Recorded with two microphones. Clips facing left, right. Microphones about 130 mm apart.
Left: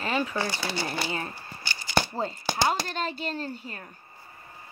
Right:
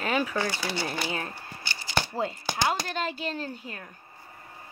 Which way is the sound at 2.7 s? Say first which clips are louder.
Left 1 dB; 5° right (ahead or behind).